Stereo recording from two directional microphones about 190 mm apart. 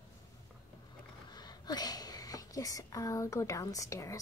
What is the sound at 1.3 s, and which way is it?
Speech, 20° left (ahead or behind).